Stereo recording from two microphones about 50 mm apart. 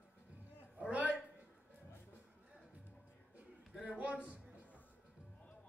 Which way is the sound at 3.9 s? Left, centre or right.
Right.